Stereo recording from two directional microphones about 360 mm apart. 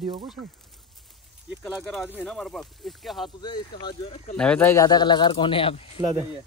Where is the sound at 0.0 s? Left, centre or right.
Centre.